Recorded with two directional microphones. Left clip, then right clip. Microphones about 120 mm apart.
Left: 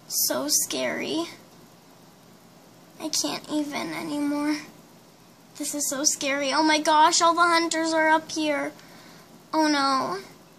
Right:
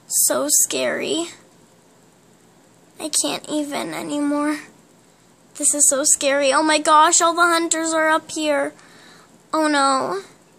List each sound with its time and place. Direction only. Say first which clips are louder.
0.3 s a woman's voice: right 7 dB; 45° right (ahead or behind)
3.0 s a woman's voice: right 5 dB; 45° right (ahead or behind)